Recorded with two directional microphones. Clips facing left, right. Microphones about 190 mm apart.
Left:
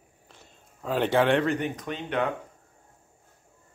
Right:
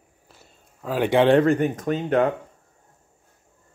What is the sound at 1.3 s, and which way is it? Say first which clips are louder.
Speech: right 7 dB; 45° right (ahead or behind).